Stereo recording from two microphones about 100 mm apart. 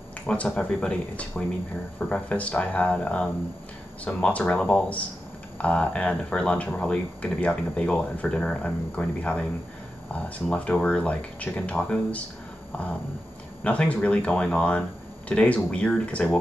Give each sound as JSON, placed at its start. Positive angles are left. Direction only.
{"t": 0.3, "sound": "speech", "side_deg": 10}
{"t": 13.7, "sound": "speech", "side_deg": 15}